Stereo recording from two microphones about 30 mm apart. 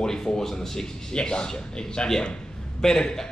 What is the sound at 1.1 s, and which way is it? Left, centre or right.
Speech, left.